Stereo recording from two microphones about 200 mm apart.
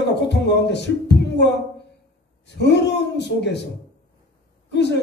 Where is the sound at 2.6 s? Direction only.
60° left (ahead or behind).